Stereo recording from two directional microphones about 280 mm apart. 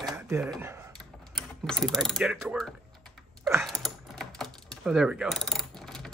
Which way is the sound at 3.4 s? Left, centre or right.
Centre.